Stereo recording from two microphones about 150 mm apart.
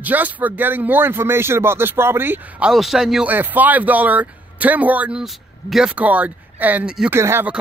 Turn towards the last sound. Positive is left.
turn(degrees=-15)  # may be behind; listen again after turning